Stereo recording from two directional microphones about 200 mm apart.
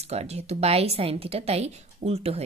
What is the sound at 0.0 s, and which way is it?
A woman's voice, 30° right (ahead or behind).